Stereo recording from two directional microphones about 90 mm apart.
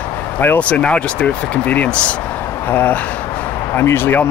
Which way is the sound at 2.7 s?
20° left (ahead or behind).